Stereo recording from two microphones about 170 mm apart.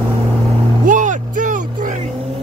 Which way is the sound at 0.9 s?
50° right (ahead or behind).